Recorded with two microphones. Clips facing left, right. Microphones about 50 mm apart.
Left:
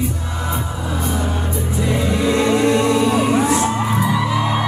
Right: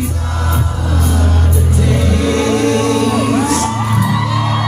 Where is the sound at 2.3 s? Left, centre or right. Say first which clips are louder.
Right 1 dB; right.